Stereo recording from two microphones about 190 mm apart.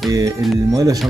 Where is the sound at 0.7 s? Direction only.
20° right (ahead or behind).